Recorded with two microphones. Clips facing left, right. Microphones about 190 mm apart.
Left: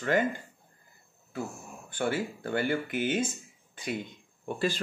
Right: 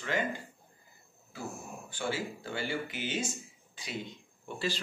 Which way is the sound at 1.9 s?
55° left (ahead or behind).